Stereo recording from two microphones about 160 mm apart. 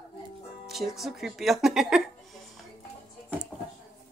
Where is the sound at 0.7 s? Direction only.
Centre (ahead or behind).